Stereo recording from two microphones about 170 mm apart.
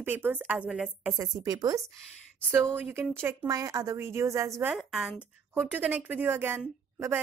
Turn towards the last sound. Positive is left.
turn(degrees=-15)  # may be behind; listen again after turning